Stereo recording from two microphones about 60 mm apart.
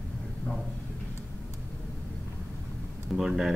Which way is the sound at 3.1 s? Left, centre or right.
Centre.